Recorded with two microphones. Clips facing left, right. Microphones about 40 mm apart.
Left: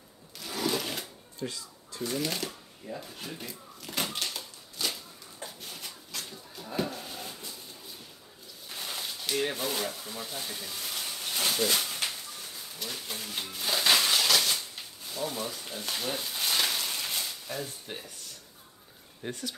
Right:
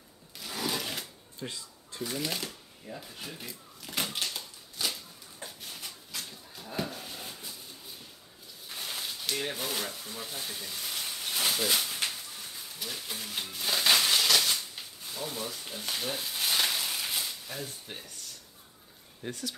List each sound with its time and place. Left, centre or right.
0.4 s sewing machine: centre
1.4 s speech: centre
2.0 s shuffling cards: centre
8.6 s a sound: centre
19.2 s speech: left